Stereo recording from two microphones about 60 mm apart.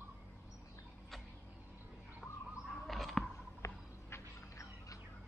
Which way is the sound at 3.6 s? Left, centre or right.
Left.